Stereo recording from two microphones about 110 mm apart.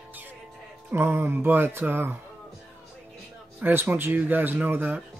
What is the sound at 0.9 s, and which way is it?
Speech, 20° right (ahead or behind).